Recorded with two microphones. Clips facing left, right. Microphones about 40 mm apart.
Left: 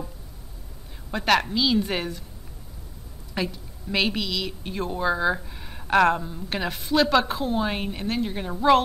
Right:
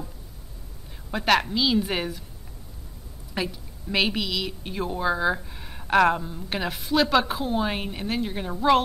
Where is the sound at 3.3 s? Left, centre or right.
Centre.